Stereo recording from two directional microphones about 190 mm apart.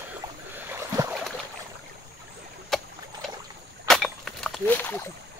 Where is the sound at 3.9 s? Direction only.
5° left (ahead or behind).